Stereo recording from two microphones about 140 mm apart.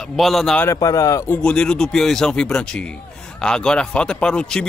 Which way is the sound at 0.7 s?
25° left (ahead or behind).